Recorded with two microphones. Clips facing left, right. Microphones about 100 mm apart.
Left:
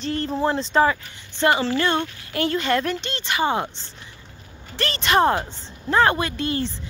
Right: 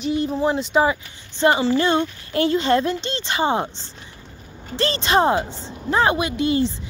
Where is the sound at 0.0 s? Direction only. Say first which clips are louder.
Right 2 dB; 10° right (ahead or behind).